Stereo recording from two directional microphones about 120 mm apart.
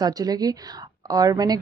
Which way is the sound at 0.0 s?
30° right (ahead or behind).